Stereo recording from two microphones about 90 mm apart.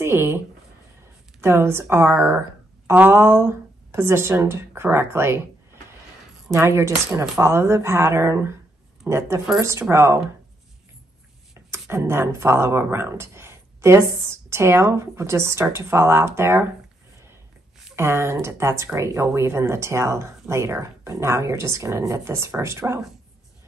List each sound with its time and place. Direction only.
0.0 s speech: 30° right (ahead or behind)
1.4 s speech: 30° right (ahead or behind)
6.6 s speech: 30° right (ahead or behind)
11.7 s speech: 30° right (ahead or behind)
17.9 s speech: 30° right (ahead or behind)